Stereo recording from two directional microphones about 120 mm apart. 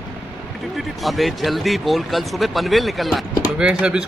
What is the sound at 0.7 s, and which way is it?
Speech, centre (ahead or behind).